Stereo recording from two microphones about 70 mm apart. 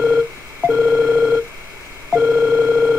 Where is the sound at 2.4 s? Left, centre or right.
Right.